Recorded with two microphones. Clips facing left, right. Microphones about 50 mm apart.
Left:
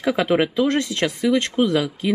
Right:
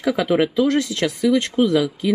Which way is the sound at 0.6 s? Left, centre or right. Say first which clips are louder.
Right 1 dB; left.